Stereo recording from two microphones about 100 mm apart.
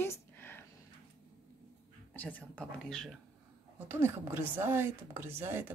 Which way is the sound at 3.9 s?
20° right (ahead or behind).